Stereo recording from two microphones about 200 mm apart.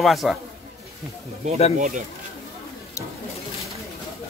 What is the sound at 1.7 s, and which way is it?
Speech, 40° right (ahead or behind).